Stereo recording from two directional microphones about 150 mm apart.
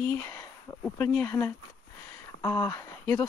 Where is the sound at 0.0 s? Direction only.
15° left (ahead or behind).